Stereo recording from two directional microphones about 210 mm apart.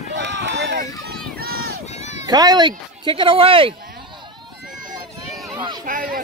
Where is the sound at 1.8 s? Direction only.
35° left (ahead or behind).